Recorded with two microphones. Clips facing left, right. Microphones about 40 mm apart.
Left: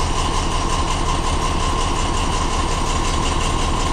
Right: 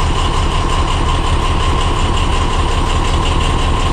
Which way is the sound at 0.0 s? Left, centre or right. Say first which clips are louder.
Right 4 dB; right.